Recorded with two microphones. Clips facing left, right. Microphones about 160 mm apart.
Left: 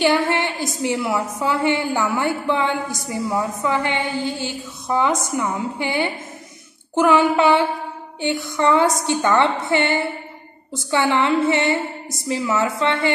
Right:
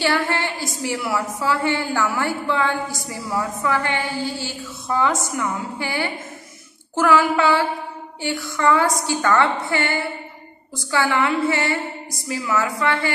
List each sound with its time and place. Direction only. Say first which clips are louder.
0.0 s a woman's voice: left 3 dB; 20° left (ahead or behind)